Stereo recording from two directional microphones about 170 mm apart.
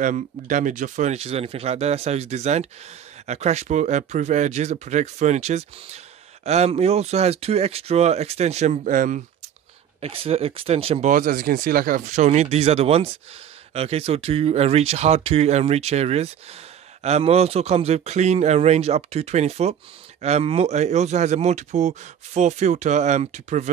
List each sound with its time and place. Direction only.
0.0 s a man's voice: 50° right (ahead or behind)
9.9 s a man's voice: 35° right (ahead or behind)
11.1 s a man's voice: 50° right (ahead or behind)